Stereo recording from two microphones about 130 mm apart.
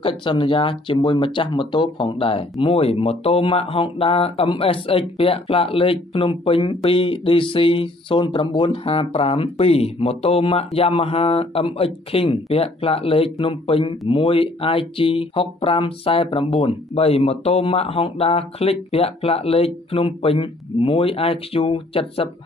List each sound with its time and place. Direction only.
0.0 s speech: 40° left (ahead or behind)